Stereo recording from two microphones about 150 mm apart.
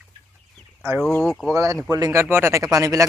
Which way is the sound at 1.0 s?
5° left (ahead or behind).